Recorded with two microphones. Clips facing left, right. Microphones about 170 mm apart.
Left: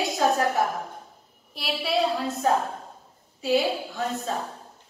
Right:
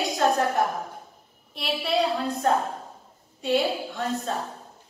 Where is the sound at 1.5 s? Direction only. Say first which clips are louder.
Right 1 dB; centre (ahead or behind).